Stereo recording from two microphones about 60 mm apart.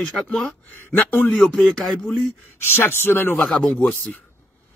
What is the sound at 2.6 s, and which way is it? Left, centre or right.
Speech, left.